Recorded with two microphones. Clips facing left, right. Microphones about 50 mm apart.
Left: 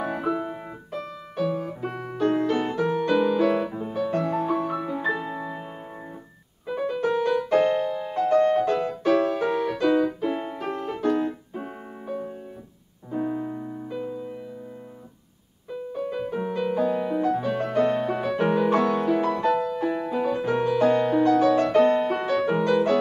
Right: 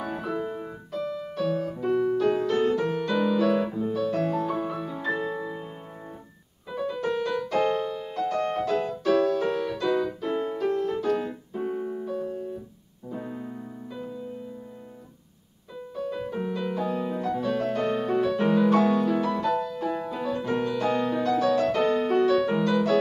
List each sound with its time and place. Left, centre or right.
0.4 s piano: left
2.1 s music: left; by 3.3 s centre
3.3 s music: left
5.0 s music: left
6.7 s piano: left
7.1 s music: centre
11.1 s keyboard: centre
11.9 s music: left
13.1 s piano: left
15.9 s music: left
16.9 s music: left
20.9 s music: left